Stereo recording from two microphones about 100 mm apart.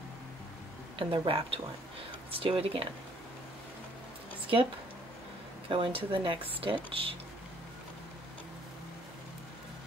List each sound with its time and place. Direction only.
0.9 s speech: 60° right (ahead or behind)
5.7 s speech: 65° right (ahead or behind)